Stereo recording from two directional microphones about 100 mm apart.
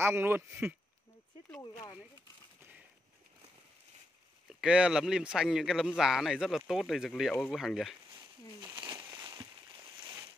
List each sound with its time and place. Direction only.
0.0 s speech: 25° right (ahead or behind)
1.6 s speech: 40° left (ahead or behind)
4.5 s a man's voice: 10° right (ahead or behind)
8.7 s a sound: 50° right (ahead or behind)